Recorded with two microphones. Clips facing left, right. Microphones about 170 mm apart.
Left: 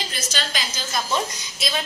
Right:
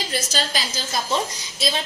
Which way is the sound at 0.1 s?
35° right (ahead or behind).